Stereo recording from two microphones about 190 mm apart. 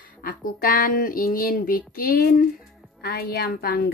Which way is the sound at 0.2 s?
50° left (ahead or behind).